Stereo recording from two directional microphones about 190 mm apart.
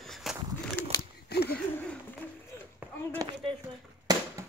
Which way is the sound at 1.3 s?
60° left (ahead or behind).